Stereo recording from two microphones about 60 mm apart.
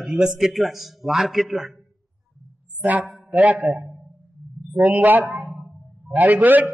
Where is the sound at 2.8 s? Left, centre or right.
Right.